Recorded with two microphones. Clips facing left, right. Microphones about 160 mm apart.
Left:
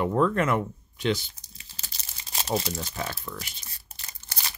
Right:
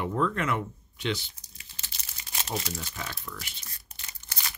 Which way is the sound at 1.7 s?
35° left (ahead or behind).